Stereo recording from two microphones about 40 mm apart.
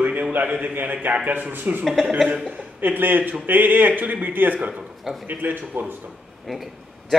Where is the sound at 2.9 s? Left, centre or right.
Right.